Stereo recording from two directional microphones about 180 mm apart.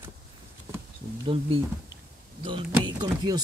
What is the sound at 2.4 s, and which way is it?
Speech, 25° right (ahead or behind).